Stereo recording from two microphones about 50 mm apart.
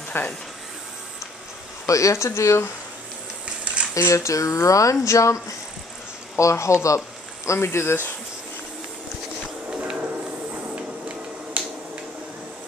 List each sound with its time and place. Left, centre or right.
0.1 s speech: left
1.9 s speech: left
3.9 s speech: left
7.4 s speech: left
9.4 s a sound: centre
11.6 s finger snapping: right